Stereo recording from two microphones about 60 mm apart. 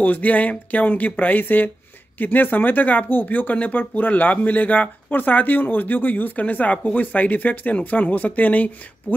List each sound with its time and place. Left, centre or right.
0.0 s speech: left